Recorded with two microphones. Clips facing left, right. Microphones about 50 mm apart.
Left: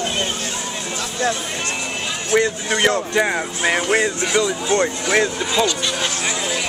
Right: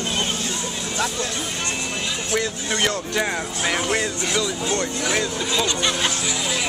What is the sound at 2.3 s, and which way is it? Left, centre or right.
Speech, centre.